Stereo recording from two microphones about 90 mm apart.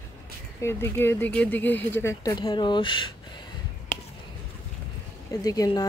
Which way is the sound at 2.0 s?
35° left (ahead or behind).